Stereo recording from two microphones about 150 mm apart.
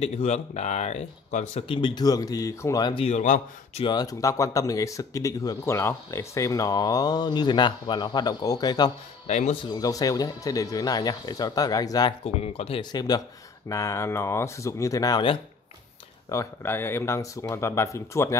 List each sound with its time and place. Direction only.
0.0 s speech: 45° left (ahead or behind)
1.7 s speech: 35° left (ahead or behind)
3.2 s a man's voice: 55° left (ahead or behind)
3.8 s speech: 25° left (ahead or behind)
9.3 s speech: 45° left (ahead or behind)
9.7 s speech: 25° left (ahead or behind)
12.4 s speech: 45° left (ahead or behind)
12.9 s speech: 25° left (ahead or behind)